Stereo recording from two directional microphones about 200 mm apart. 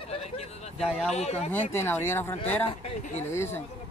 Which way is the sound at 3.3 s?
10° left (ahead or behind).